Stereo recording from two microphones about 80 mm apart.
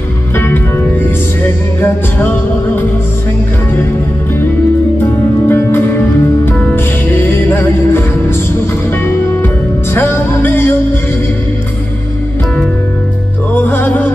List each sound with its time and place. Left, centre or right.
1.8 s music: left
5.5 s music: left
9.9 s music: left
13.6 s music: left